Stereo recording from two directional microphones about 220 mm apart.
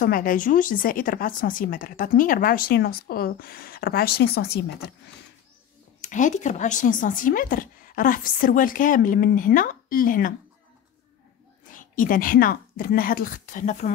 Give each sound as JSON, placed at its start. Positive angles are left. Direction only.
{"t": 0.0, "sound": "speech", "side_deg": 40}
{"t": 5.9, "sound": "speech", "side_deg": 35}
{"t": 11.7, "sound": "a woman's voice", "side_deg": 35}